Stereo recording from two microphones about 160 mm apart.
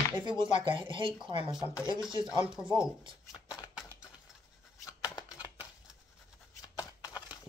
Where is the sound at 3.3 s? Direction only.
20° left (ahead or behind).